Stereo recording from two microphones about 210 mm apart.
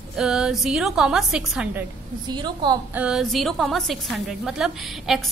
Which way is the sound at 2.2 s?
20° right (ahead or behind).